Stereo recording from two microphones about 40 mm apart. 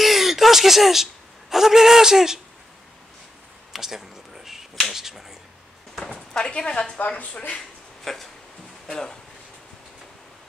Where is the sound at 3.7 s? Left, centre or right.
Centre.